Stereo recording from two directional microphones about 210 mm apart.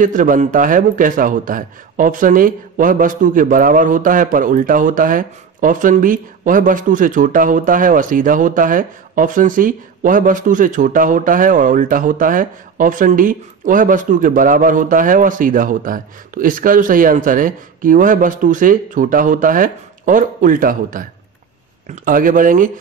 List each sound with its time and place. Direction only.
0.0 s a man's voice: 40° right (ahead or behind)